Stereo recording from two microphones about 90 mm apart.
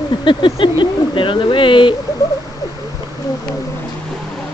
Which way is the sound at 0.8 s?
65° left (ahead or behind).